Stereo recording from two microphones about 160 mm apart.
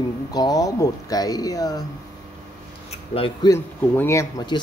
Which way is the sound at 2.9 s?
35° left (ahead or behind).